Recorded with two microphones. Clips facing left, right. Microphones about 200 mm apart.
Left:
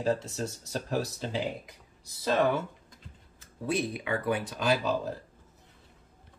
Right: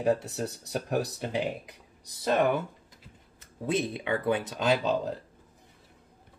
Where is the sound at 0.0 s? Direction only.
15° right (ahead or behind).